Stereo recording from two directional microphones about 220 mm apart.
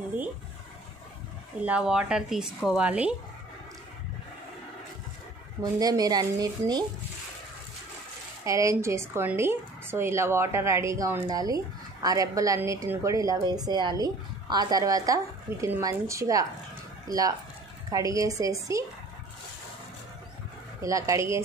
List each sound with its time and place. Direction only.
1.6 s speech: 5° right (ahead or behind)
5.6 s a woman's voice: 15° right (ahead or behind)
8.5 s a woman's voice: 15° right (ahead or behind)
17.9 s a woman's voice: 15° right (ahead or behind)
20.8 s a woman's voice: 15° right (ahead or behind)